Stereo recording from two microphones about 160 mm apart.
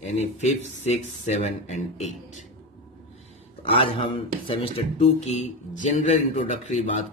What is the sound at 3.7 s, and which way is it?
Speech, 35° left (ahead or behind).